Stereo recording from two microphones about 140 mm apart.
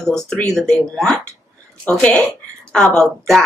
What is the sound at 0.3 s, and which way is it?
Speech, 5° left (ahead or behind).